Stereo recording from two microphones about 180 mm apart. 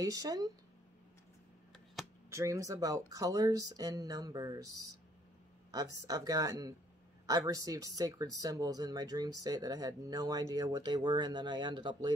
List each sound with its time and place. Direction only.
0.0 s speech: 20° right (ahead or behind)
2.2 s speech: 15° right (ahead or behind)
5.7 s speech: 20° right (ahead or behind)